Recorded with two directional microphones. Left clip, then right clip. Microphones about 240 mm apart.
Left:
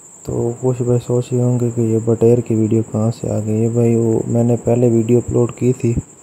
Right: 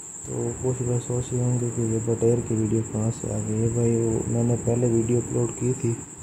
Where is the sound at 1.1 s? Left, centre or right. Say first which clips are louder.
Left 11 dB; left.